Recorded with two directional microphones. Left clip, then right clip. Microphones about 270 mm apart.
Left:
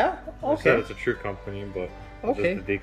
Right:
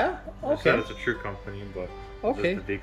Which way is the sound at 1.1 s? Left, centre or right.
Left.